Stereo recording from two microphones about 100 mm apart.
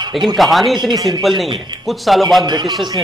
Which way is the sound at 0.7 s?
45° right (ahead or behind).